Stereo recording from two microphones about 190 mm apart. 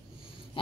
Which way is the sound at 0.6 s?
25° left (ahead or behind).